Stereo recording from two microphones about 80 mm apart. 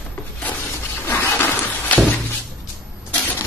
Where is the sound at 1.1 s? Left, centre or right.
Left.